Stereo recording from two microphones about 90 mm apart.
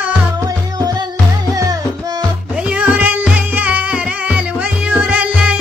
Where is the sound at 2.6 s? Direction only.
10° right (ahead or behind).